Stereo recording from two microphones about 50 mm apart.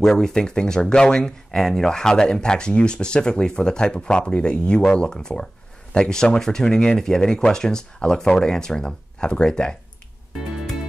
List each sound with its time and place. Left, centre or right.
0.0 s speech: centre